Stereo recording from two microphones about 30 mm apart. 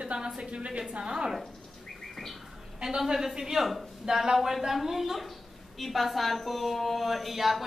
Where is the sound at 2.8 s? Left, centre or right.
Centre.